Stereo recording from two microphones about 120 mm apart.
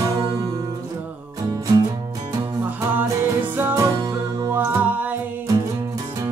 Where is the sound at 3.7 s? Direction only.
30° right (ahead or behind).